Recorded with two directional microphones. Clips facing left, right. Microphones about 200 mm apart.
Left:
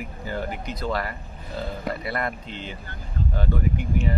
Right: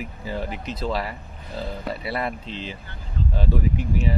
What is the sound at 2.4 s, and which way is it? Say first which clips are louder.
Speech: right 2 dB; 30° right (ahead or behind).